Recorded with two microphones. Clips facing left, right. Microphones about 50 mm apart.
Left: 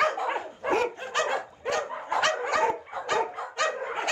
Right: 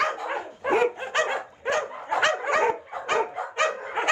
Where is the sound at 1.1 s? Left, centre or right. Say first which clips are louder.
Right 2 dB; right.